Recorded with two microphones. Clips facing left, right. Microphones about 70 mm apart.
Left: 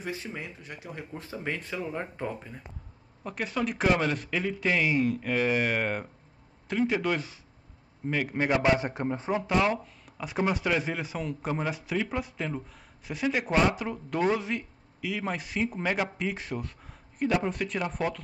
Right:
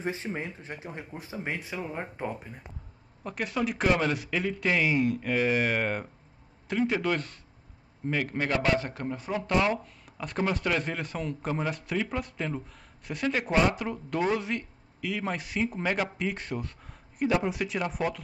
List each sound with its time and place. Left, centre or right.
0.0 s speech: right
1.1 s speech: centre
3.3 s speech: centre
8.4 s a man's voice: centre
9.6 s speech: centre